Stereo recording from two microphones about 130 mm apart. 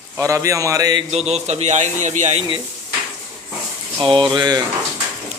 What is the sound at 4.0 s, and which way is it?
Speech, 40° right (ahead or behind).